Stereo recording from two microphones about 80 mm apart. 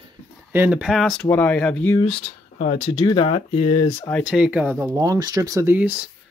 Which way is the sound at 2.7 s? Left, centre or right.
Left.